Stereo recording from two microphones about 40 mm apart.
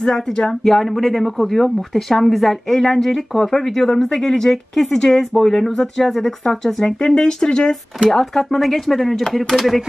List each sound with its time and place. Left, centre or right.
0.0 s speech: centre
0.7 s speech: centre; by 7.7 s left
8.1 s speech: centre